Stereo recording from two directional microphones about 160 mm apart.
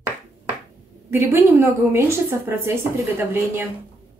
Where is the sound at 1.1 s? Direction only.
15° right (ahead or behind).